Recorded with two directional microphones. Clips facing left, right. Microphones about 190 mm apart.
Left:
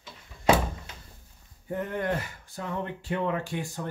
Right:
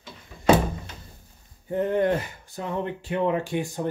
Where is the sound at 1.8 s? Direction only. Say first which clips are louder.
Right 8 dB; 25° right (ahead or behind).